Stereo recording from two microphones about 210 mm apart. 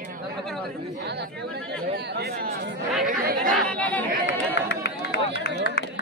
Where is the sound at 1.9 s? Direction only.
50° right (ahead or behind).